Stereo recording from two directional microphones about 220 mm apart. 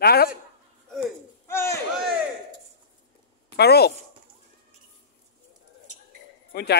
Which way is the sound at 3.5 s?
45° left (ahead or behind).